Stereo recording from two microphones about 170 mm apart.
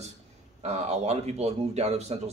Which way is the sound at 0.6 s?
40° right (ahead or behind).